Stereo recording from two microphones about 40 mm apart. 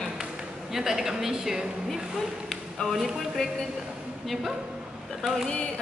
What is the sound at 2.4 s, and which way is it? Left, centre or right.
Speech, centre.